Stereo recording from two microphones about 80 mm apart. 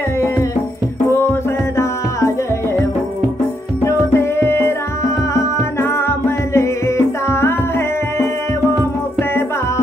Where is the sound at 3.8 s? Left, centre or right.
Left.